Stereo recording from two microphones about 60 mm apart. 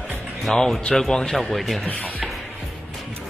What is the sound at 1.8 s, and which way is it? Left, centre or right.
Speech, left.